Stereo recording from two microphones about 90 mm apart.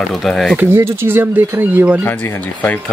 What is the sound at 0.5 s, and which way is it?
Speech, 30° right (ahead or behind).